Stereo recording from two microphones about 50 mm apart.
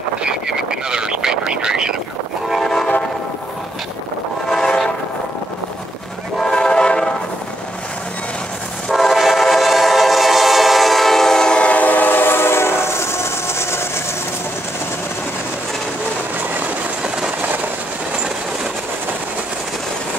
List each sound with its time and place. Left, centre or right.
0.2 s vehicle: centre
2.5 s train: centre
4.5 s train: centre
6.4 s train: centre
8.9 s train: centre; by 14.0 s left